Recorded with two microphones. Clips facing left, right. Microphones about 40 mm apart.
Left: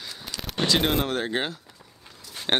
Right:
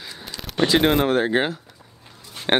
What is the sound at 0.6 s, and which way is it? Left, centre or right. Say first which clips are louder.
Speech: right 6 dB; centre.